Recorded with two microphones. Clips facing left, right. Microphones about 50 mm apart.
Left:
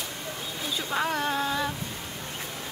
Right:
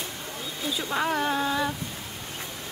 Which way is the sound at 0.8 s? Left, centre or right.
Centre.